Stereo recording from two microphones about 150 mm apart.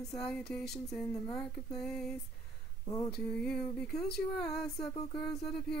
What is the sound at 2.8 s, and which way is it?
Speech, 25° left (ahead or behind).